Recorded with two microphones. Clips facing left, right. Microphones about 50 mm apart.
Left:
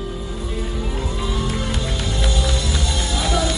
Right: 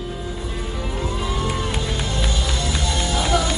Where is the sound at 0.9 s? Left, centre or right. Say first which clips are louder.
Even; right.